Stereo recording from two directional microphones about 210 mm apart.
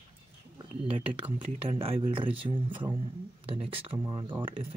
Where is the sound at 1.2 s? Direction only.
25° right (ahead or behind).